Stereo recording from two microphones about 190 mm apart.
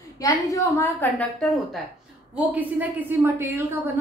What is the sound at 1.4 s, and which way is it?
A woman's voice, centre (ahead or behind).